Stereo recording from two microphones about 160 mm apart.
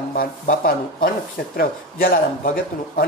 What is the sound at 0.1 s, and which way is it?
Speech, 65° left (ahead or behind).